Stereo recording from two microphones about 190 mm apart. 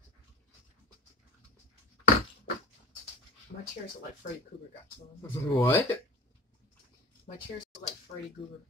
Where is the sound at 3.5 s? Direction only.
45° left (ahead or behind).